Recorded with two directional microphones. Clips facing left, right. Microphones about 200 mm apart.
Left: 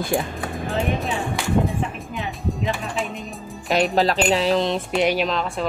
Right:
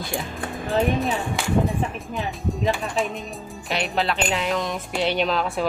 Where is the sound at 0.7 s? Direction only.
Centre (ahead or behind).